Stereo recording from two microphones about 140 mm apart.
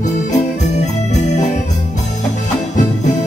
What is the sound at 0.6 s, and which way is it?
Organ, 55° left (ahead or behind).